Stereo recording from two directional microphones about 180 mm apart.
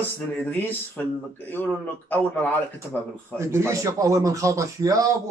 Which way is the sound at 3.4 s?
15° right (ahead or behind).